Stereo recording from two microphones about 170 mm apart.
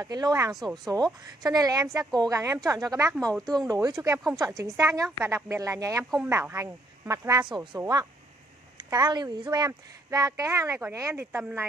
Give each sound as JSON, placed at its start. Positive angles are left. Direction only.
{"t": 0.0, "sound": "speech", "side_deg": -20}
{"t": 0.5, "sound": "speech", "side_deg": 0}
{"t": 0.8, "sound": "speech", "side_deg": -20}
{"t": 6.0, "sound": "speech", "side_deg": -5}
{"t": 6.3, "sound": "speech", "side_deg": -15}